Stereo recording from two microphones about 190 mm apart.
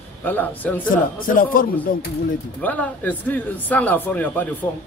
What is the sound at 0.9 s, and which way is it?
Speech, 45° left (ahead or behind).